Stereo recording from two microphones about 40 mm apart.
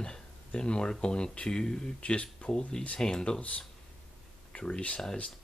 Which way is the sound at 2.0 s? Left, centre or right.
Left.